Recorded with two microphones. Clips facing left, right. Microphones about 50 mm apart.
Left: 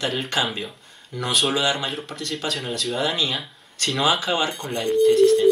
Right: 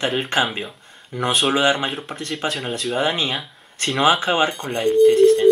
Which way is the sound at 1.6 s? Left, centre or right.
Right.